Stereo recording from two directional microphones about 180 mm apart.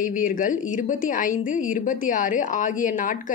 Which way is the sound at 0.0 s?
50° left (ahead or behind).